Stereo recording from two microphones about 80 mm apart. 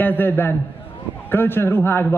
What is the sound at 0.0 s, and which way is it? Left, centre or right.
A man's voice, left.